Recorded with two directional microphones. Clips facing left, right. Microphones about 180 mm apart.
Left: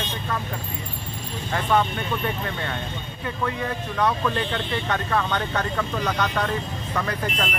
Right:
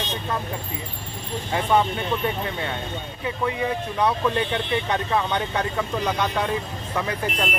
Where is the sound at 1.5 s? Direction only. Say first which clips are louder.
Right 1 dB; 15° right (ahead or behind).